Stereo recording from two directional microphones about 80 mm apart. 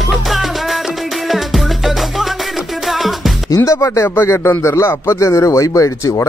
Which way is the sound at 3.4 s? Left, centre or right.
Left.